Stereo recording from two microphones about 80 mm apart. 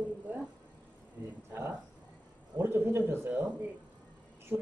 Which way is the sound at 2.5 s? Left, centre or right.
Right.